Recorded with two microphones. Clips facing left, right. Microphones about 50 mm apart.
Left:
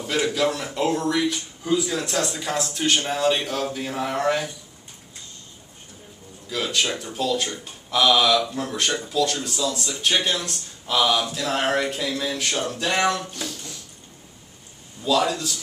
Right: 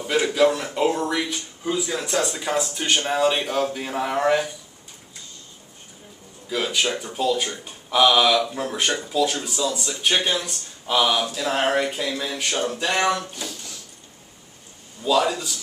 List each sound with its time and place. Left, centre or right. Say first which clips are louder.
0.0 s speech: right 3 dB; centre
6.5 s a man's voice: right 1 dB; centre
15.0 s a man's voice: right 1 dB; centre